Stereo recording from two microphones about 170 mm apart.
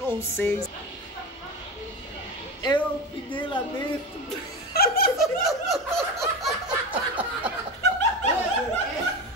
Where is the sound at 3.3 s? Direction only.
30° left (ahead or behind).